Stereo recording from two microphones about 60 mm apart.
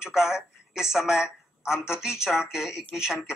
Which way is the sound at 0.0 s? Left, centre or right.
Centre.